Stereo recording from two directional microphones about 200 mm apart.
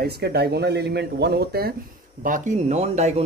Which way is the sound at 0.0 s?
55° right (ahead or behind).